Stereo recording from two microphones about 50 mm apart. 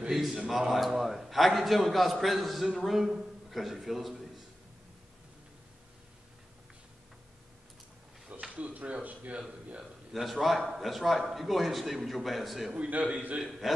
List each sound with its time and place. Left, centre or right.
0.1 s a man's voice: centre
8.3 s speech: right
10.1 s a man's voice: centre
12.7 s a man's voice: right
13.4 s a man's voice: centre